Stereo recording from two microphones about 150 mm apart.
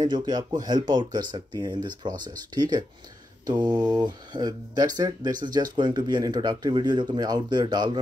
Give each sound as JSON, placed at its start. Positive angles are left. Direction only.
{"t": 0.0, "sound": "speech", "side_deg": -30}